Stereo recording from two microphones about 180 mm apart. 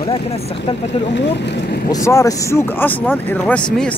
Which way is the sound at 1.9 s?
15° left (ahead or behind).